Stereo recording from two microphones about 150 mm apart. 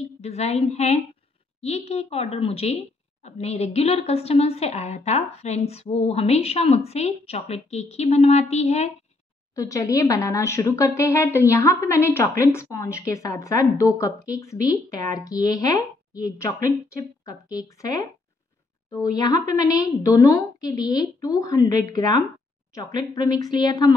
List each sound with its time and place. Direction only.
0.0 s a woman's voice: 45° left (ahead or behind)
9.6 s speech: 20° left (ahead or behind)